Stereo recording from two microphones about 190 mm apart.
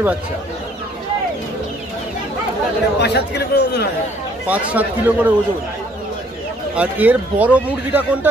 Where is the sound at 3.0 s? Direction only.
60° left (ahead or behind).